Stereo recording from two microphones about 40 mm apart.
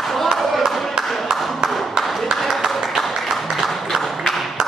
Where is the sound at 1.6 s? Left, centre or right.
Centre.